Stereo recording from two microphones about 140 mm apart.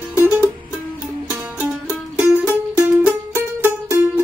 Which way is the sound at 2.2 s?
10° right (ahead or behind).